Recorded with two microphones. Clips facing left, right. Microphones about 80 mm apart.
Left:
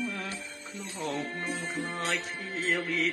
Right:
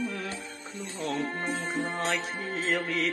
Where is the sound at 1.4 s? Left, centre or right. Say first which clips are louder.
Right 3 dB; right.